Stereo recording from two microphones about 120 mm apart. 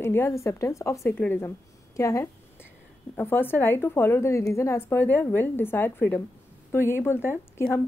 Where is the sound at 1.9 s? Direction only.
25° left (ahead or behind).